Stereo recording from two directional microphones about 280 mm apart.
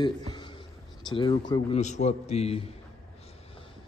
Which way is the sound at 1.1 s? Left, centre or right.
Centre.